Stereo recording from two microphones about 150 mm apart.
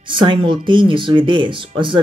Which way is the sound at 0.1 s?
30° right (ahead or behind).